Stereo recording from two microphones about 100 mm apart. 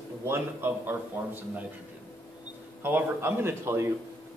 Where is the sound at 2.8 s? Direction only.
20° right (ahead or behind).